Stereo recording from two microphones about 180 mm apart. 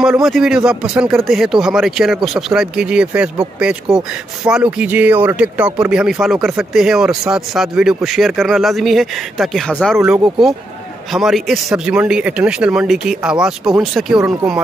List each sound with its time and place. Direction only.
0.0 s speech: 5° right (ahead or behind)